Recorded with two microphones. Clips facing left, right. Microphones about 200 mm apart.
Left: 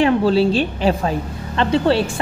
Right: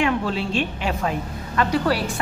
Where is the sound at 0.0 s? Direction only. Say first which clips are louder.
Left 8 dB; 35° left (ahead or behind).